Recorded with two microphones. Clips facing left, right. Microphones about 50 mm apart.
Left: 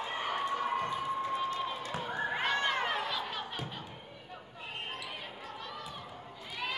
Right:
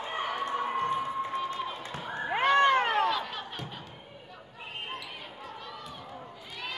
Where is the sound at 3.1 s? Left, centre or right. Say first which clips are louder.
Right 5 dB; centre.